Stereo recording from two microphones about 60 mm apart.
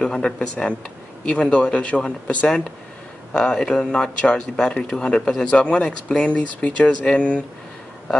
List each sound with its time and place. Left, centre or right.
0.0 s speech: centre